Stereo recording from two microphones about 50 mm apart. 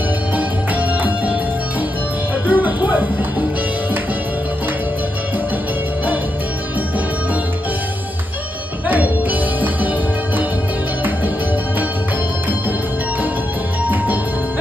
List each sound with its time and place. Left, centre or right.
0.4 s music: right
2.4 s music: right
8.8 s music: right